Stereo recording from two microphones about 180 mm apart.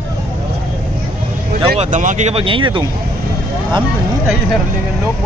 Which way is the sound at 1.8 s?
45° right (ahead or behind).